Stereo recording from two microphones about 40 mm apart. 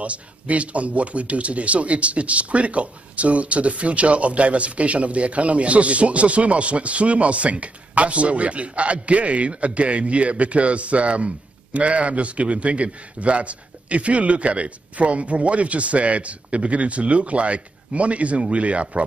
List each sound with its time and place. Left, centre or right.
0.0 s a man's voice: right